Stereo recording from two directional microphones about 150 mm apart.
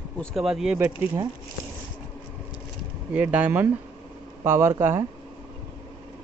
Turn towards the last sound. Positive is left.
turn(degrees=-15)  # may be behind; listen again after turning